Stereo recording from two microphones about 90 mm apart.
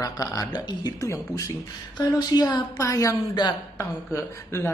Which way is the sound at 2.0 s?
50° left (ahead or behind).